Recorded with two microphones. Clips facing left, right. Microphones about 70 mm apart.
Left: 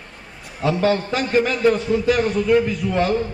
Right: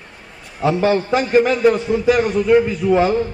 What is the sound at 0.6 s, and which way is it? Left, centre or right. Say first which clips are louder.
A man's voice: right 3 dB; centre.